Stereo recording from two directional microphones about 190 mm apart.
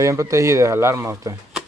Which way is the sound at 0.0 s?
15° right (ahead or behind).